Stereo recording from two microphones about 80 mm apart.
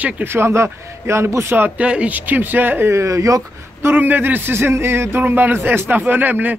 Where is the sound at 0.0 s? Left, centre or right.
Right.